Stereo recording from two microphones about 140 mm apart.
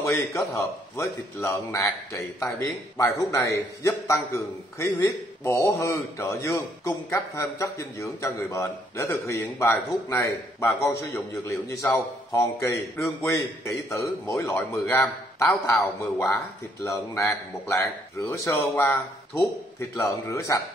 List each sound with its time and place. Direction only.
0.0 s a man's voice: 20° left (ahead or behind)